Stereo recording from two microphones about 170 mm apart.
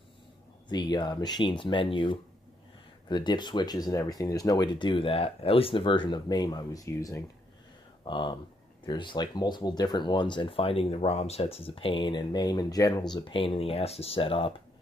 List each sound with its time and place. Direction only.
0.7 s speech: 25° left (ahead or behind)